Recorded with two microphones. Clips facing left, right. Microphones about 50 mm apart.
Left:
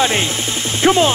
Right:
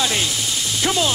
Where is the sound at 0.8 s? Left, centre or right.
Left.